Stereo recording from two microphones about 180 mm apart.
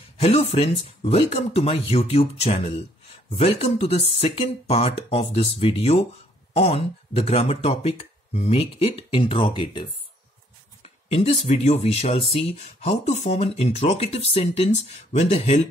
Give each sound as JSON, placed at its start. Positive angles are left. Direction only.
{"t": 0.2, "sound": "speech", "side_deg": 35}
{"t": 11.1, "sound": "speech", "side_deg": 35}